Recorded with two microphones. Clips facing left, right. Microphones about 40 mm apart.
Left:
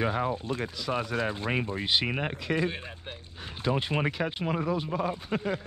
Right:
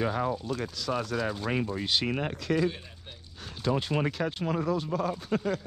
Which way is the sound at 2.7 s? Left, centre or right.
Left.